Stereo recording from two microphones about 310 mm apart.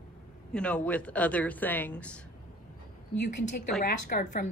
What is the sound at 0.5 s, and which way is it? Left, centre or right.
Speech, centre.